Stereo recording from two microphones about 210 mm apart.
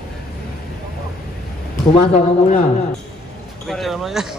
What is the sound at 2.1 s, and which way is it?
Speech, 35° left (ahead or behind).